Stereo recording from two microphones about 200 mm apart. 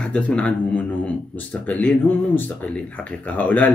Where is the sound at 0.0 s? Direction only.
5° left (ahead or behind).